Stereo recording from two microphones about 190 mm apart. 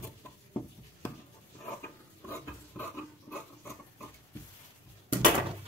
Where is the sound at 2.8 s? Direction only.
10° left (ahead or behind).